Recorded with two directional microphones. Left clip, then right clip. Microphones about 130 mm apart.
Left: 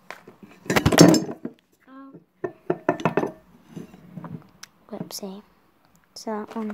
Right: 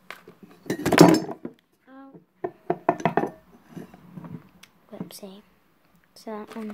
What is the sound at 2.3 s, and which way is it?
Music, 60° left (ahead or behind).